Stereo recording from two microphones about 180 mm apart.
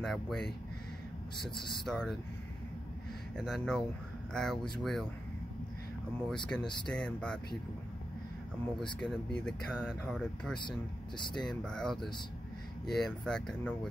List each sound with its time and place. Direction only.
0.0 s speech: centre (ahead or behind)
1.5 s speech: centre (ahead or behind)
3.3 s speech: centre (ahead or behind)
6.2 s speech: 5° left (ahead or behind)
9.0 s speech: 5° left (ahead or behind)
11.1 s speech: 25° left (ahead or behind)
11.4 s speech: 5° left (ahead or behind)